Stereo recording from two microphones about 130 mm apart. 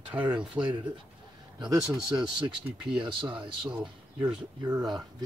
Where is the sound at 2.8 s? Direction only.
40° right (ahead or behind).